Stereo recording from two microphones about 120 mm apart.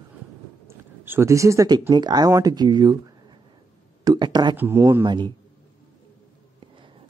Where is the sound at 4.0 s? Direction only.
35° right (ahead or behind).